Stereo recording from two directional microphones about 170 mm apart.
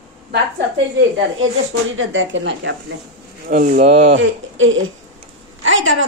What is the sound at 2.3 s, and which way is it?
Speech, 90° right.